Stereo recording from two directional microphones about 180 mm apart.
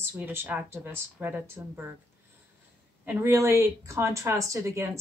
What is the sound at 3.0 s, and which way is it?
A woman's voice, 10° right (ahead or behind).